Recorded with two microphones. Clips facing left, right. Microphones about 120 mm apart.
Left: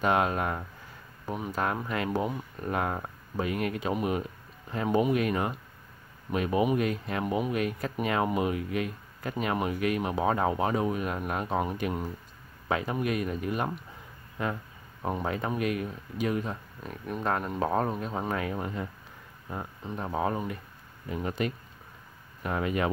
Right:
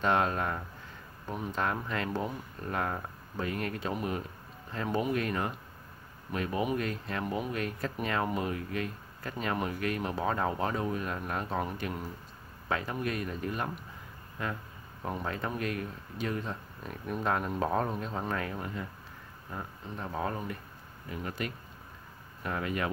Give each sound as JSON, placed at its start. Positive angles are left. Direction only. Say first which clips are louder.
{"t": 0.0, "sound": "speech", "louder": "left 2 dB", "side_deg": 10}
{"t": 15.0, "sound": "speech", "louder": "left 4 dB", "side_deg": 15}